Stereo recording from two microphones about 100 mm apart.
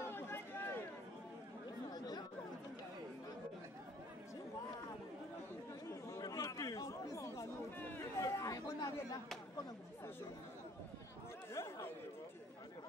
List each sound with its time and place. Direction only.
0.0 s a sound: 20° left (ahead or behind)
1.9 s chatter: 45° left (ahead or behind)
5.9 s chatter: 35° left (ahead or behind)
11.5 s chatter: 30° left (ahead or behind)